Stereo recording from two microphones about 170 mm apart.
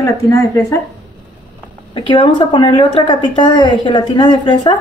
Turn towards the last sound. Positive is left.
turn(degrees=25)  # may be behind; listen again after turning